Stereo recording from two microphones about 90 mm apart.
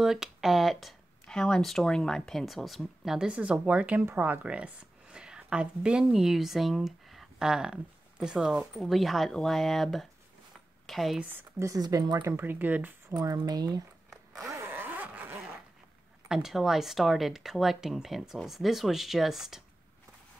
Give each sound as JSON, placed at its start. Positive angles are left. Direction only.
{"t": 0.0, "sound": "speech", "side_deg": -5}
{"t": 11.6, "sound": "speech", "side_deg": -40}
{"t": 12.2, "sound": "speech", "side_deg": -25}
{"t": 13.1, "sound": "speech", "side_deg": -45}
{"t": 14.1, "sound": "zipper", "side_deg": -5}
{"t": 14.5, "sound": "zipper", "side_deg": -25}
{"t": 16.3, "sound": "speech", "side_deg": -5}